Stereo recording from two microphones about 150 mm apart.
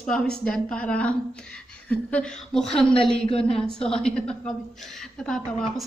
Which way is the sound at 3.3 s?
40° left (ahead or behind).